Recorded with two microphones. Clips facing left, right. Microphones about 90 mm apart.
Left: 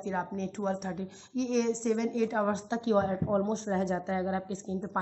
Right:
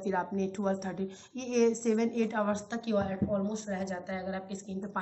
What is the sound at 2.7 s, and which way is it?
A woman's voice, 30° left (ahead or behind).